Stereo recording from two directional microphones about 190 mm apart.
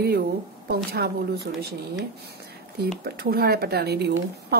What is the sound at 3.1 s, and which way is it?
A woman's voice, 55° right (ahead or behind).